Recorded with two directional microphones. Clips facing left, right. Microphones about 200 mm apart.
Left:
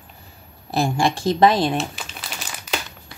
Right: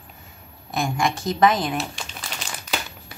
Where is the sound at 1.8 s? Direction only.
Centre (ahead or behind).